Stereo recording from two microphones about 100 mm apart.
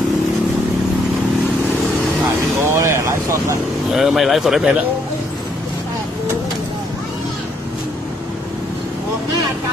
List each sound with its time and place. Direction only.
2.6 s vehicle: 30° right (ahead or behind)
3.9 s speech: 5° right (ahead or behind)